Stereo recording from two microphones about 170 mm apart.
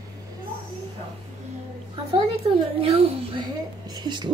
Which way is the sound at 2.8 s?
35° right (ahead or behind).